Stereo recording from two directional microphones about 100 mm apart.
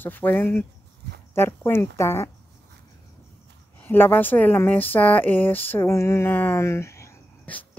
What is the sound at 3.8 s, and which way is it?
Speech, 20° left (ahead or behind).